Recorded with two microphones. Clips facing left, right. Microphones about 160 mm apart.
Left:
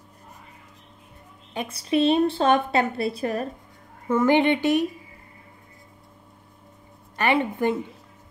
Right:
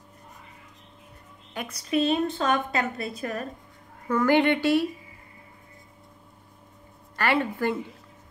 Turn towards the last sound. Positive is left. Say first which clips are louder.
# left 3 dB
turn(degrees=20)  # may be behind; listen again after turning